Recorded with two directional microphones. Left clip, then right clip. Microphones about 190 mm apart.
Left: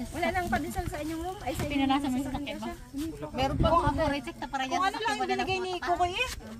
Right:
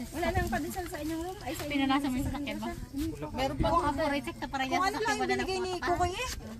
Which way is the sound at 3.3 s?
15° left (ahead or behind).